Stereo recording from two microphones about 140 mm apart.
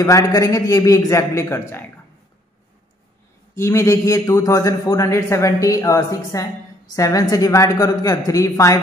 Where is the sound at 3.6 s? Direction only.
20° left (ahead or behind).